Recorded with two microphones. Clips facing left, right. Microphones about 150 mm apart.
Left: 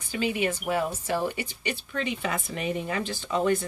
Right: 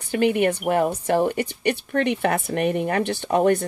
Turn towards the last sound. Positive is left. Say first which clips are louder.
# right 6 dB
turn(degrees=-60)  # may be behind; listen again after turning